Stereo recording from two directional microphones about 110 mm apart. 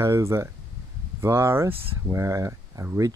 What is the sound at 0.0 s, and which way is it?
Speech, 25° right (ahead or behind).